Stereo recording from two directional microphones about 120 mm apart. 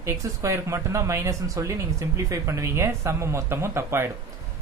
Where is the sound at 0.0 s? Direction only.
25° right (ahead or behind).